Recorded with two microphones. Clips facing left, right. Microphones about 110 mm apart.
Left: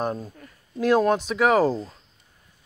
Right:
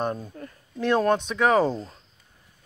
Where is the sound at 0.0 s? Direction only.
Centre (ahead or behind).